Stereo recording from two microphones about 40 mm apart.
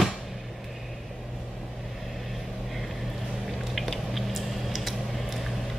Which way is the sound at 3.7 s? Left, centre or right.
Centre.